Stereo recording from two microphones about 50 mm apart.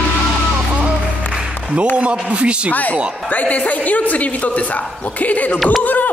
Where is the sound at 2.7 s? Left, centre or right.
Left.